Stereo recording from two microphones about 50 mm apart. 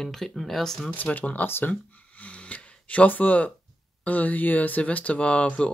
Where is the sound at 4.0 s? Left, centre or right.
Left.